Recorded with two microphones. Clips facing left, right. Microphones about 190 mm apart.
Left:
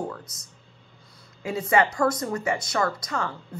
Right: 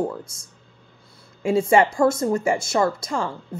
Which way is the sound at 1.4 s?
30° right (ahead or behind).